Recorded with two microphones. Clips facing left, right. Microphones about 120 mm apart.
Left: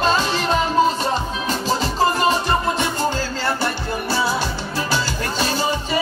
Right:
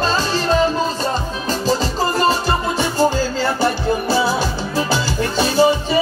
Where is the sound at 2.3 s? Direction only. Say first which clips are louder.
Right 1 dB; 35° right (ahead or behind).